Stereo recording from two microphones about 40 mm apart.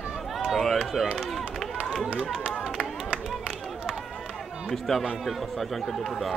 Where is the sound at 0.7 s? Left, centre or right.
Centre.